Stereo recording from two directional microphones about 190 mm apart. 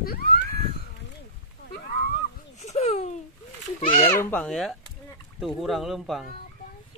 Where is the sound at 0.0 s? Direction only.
55° left (ahead or behind).